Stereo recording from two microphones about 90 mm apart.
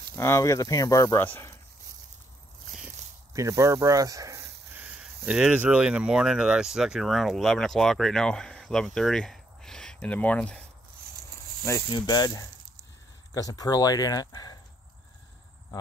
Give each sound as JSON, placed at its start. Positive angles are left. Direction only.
{"t": 0.2, "sound": "speech", "side_deg": 35}
{"t": 1.1, "sound": "speech", "side_deg": 20}
{"t": 3.3, "sound": "speech", "side_deg": -35}
{"t": 4.7, "sound": "speech", "side_deg": -15}
{"t": 11.9, "sound": "speech", "side_deg": 50}